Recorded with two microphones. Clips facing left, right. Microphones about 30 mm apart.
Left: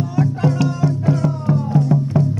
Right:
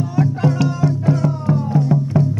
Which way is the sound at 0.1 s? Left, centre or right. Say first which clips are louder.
Right 1 dB; centre.